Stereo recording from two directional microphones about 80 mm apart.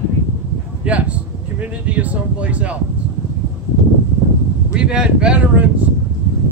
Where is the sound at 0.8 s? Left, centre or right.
Centre.